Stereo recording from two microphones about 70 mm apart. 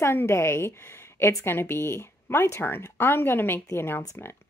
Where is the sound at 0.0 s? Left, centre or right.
Left.